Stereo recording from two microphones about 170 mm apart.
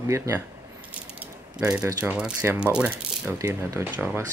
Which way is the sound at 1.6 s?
5° right (ahead or behind).